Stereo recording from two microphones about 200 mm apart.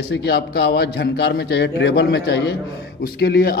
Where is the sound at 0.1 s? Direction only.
55° left (ahead or behind).